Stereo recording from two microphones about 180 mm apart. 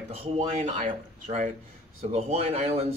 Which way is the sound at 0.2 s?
35° right (ahead or behind).